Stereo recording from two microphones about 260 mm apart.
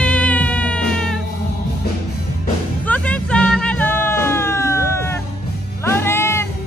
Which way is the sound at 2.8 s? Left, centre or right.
Centre.